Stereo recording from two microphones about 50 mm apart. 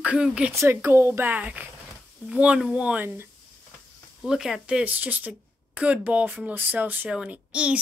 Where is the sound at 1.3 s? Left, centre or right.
Right.